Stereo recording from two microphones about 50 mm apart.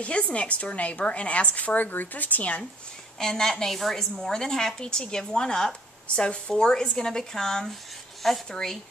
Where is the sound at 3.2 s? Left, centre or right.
Centre.